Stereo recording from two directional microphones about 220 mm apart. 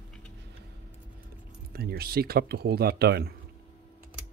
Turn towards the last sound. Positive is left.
turn(degrees=-45)  # may be behind; listen again after turning